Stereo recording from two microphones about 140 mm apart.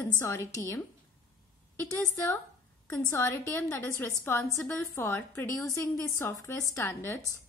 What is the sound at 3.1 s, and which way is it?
A woman's voice, 15° left (ahead or behind).